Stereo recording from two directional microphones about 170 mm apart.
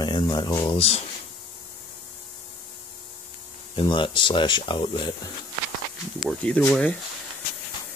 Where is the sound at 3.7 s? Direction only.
30° left (ahead or behind).